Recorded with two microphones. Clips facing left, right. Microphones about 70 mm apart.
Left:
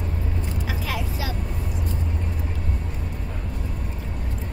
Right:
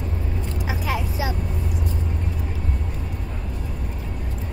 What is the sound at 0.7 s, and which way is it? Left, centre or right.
Vehicle, centre.